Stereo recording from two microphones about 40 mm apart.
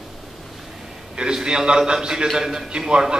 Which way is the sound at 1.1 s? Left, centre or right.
Centre.